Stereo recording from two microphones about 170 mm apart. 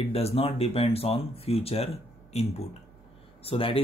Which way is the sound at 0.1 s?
35° left (ahead or behind).